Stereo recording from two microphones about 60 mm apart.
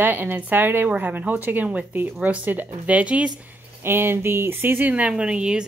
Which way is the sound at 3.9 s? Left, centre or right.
Right.